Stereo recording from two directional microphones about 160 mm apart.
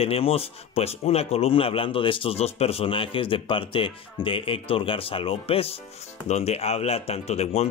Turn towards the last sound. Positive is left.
turn(degrees=40)  # may be behind; listen again after turning